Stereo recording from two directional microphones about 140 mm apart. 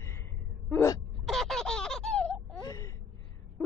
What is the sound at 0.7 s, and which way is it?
Throat clearing, 20° left (ahead or behind).